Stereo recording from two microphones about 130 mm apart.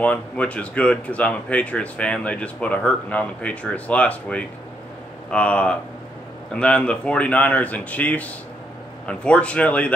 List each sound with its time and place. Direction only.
0.0 s speech: 10° left (ahead or behind)